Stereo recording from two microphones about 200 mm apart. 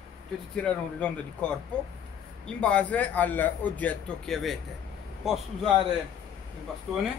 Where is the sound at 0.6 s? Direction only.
5° left (ahead or behind).